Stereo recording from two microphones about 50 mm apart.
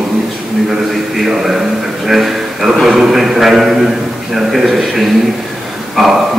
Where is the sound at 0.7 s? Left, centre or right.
Centre.